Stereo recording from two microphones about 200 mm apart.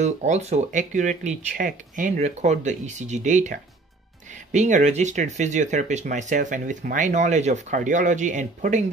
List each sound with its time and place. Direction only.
0.0 s speech: 35° right (ahead or behind)